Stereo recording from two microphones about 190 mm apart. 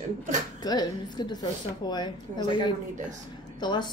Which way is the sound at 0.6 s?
20° left (ahead or behind).